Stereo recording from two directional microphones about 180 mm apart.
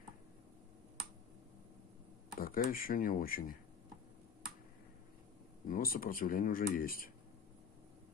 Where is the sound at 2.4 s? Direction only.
55° left (ahead or behind).